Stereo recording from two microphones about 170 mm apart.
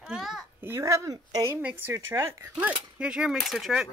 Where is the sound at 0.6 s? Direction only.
15° right (ahead or behind).